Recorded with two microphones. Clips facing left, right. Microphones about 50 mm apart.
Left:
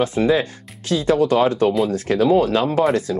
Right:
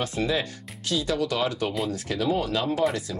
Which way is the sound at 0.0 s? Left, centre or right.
Left.